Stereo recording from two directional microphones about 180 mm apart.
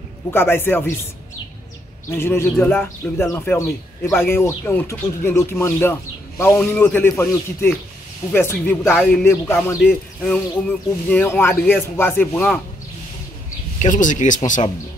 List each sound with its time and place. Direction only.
0.3 s speech: 10° left (ahead or behind)
2.0 s speech: 15° left (ahead or behind)
13.7 s speech: 45° left (ahead or behind)